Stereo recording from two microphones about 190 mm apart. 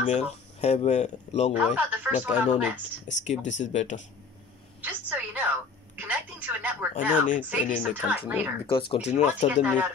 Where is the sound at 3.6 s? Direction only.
40° left (ahead or behind).